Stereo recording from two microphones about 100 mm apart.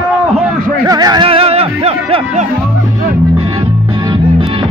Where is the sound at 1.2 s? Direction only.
70° right (ahead or behind).